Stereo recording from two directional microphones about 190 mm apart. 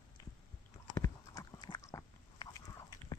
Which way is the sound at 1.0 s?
20° left (ahead or behind).